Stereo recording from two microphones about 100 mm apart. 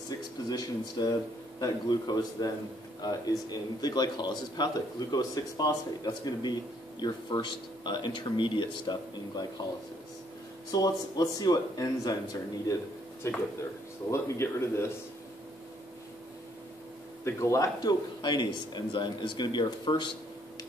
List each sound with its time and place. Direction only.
0.5 s speech: 40° left (ahead or behind)
10.7 s speech: 40° left (ahead or behind)
13.2 s speech: 25° left (ahead or behind)
17.2 s speech: 25° left (ahead or behind)
18.2 s speech: 50° left (ahead or behind)